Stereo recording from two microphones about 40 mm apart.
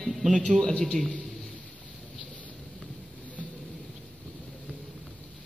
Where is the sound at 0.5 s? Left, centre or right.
Centre.